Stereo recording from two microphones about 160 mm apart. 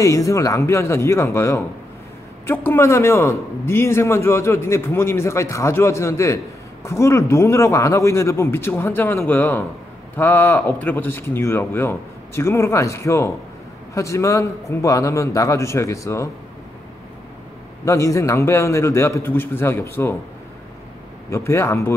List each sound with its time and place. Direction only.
0.0 s a man's voice: 20° left (ahead or behind)
17.8 s a man's voice: 20° left (ahead or behind)
21.3 s a man's voice: 15° left (ahead or behind)